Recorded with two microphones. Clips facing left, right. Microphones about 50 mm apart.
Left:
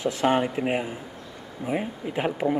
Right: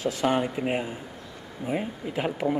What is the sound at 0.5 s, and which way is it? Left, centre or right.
Speech, centre.